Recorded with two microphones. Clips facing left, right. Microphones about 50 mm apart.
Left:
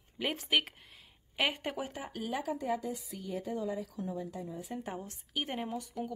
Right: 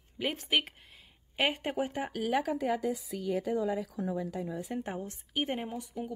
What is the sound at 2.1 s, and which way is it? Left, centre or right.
A woman's voice, right.